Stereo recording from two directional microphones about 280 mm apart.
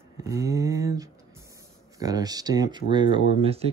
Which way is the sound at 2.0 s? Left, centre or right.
Centre.